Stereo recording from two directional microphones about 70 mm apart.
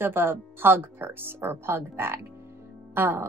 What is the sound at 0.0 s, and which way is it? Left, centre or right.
A woman's voice, right.